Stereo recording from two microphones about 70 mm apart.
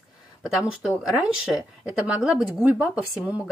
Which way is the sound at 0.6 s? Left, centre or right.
Centre.